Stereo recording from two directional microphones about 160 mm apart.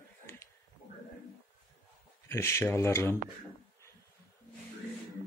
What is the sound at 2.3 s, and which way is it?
Speech, 15° left (ahead or behind).